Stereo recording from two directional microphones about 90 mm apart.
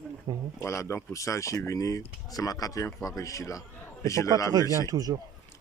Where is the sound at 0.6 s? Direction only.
30° left (ahead or behind).